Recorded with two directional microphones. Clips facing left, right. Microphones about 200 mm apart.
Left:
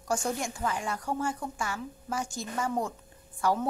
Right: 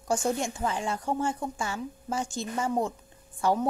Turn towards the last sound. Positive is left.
turn(degrees=-25)  # may be behind; listen again after turning